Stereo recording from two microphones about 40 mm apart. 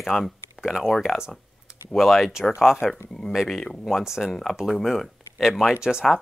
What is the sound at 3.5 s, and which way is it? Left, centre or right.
Speech, centre.